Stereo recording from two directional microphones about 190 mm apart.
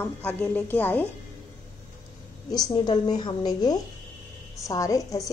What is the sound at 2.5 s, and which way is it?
A woman's voice, 20° left (ahead or behind).